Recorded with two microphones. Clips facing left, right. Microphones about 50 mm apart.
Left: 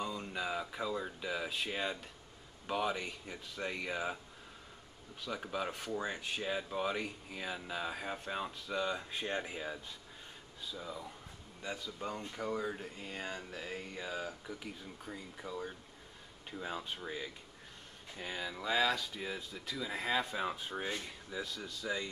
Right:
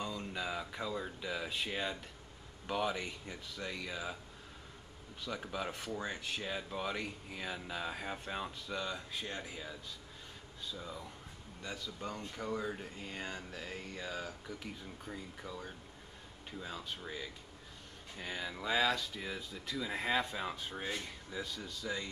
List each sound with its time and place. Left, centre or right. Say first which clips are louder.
0.0 s speech: left 1 dB; centre
3.5 s speech: left 4 dB; left
5.2 s speech: left 1 dB; centre
9.1 s speech: left 4 dB; left
10.6 s speech: left 1 dB; centre
16.6 s speech: left 4 dB; left
17.0 s speech: left 2 dB; centre